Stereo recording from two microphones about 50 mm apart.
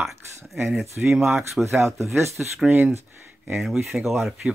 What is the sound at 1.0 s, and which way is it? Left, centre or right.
Speech, centre.